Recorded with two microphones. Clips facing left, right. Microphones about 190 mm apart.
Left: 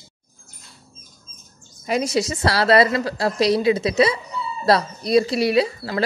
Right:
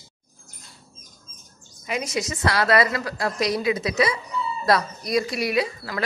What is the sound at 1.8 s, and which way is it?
Speech, 35° left (ahead or behind).